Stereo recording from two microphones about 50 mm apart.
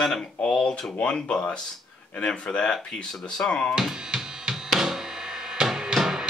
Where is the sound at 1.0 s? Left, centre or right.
Centre.